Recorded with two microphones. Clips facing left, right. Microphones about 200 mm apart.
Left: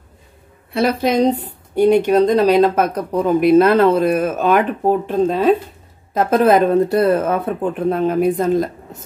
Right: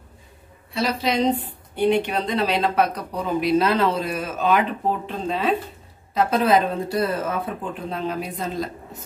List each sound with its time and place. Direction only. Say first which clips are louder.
0.7 s speech: left 7 dB; 55° left (ahead or behind)